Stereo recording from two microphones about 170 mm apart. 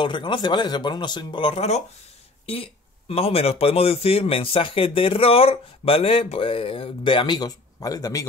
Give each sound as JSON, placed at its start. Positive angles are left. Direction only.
{"t": 0.0, "sound": "speech", "side_deg": 30}